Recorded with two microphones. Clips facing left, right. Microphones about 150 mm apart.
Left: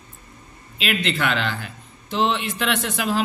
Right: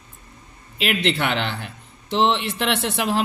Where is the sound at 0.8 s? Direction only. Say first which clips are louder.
Right 2 dB; 70° right (ahead or behind).